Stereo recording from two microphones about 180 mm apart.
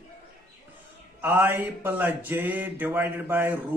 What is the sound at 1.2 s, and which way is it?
Mantra, 10° right (ahead or behind).